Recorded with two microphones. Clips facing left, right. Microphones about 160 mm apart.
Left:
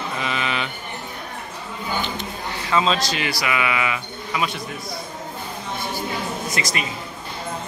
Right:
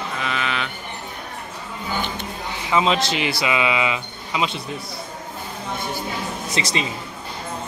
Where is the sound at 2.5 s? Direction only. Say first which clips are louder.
Right 1 dB; 20° right (ahead or behind).